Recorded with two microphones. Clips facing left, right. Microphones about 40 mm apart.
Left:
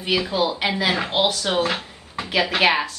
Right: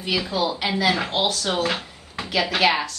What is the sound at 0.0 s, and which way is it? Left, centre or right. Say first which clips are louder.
A woman's voice: left 2 dB; centre.